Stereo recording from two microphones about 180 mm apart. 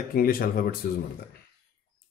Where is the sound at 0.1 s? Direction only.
55° left (ahead or behind).